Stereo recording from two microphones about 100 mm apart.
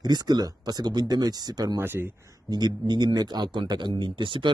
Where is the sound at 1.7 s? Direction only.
20° right (ahead or behind).